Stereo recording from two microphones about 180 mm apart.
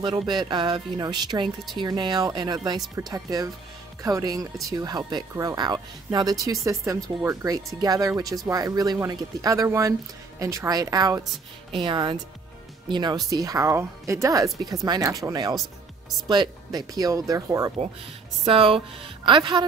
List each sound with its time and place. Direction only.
0.3 s speech: 25° right (ahead or behind)
18.4 s speech: 30° right (ahead or behind)